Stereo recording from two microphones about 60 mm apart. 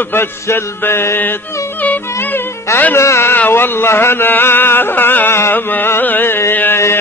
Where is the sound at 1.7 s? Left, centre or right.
Left.